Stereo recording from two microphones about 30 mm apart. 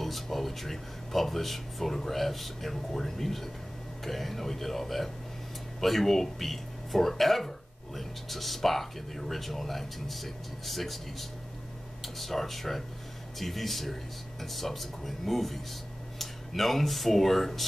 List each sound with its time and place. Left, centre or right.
0.0 s music: centre
2.0 s speech: centre